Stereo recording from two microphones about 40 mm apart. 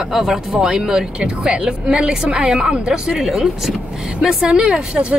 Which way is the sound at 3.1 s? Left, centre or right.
Centre.